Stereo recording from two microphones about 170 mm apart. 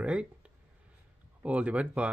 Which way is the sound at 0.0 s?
5° right (ahead or behind).